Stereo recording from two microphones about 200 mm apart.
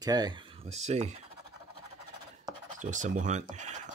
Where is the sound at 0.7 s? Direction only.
35° right (ahead or behind).